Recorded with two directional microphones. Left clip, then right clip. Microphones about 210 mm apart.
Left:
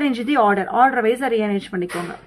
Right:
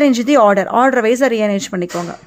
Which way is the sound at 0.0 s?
40° right (ahead or behind).